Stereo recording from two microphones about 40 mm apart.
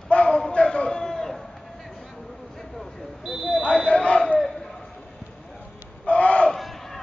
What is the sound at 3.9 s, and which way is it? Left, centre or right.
Crowd, left.